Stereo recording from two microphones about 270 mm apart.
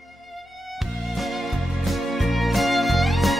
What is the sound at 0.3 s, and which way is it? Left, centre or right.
Music, centre.